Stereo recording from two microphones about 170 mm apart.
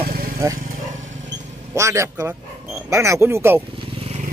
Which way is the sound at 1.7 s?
15° right (ahead or behind).